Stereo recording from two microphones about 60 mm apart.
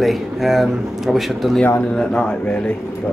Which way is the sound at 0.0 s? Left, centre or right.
Centre.